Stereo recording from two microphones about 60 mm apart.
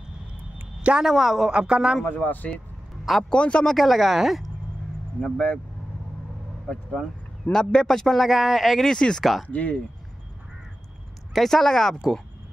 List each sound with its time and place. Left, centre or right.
1.0 s speech: centre
1.5 s a man's voice: centre
2.0 s speech: left
3.3 s speech: centre
3.7 s speech: centre
5.2 s speech: left
6.7 s speech: centre
9.5 s speech: left
11.3 s speech: centre